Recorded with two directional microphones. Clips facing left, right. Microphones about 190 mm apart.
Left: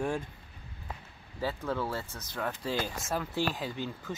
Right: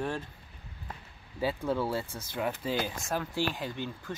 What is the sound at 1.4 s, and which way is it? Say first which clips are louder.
Speech: right 3 dB; 15° right (ahead or behind).